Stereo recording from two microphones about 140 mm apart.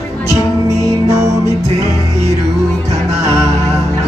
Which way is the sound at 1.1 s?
20° right (ahead or behind).